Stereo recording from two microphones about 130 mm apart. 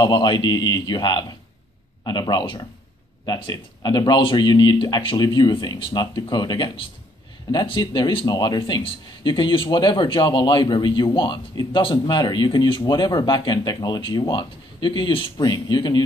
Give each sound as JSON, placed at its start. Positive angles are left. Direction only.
{"t": 0.0, "sound": "speech", "side_deg": 35}